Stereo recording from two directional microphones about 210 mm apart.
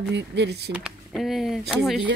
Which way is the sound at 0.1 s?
55° right (ahead or behind).